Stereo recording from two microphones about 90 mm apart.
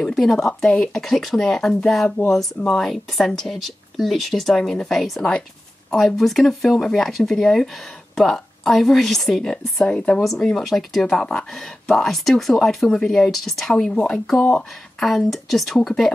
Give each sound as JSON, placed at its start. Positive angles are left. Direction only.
{"t": 0.0, "sound": "speech", "side_deg": 5}